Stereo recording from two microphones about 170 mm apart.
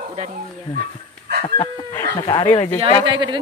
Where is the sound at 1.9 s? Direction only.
25° left (ahead or behind).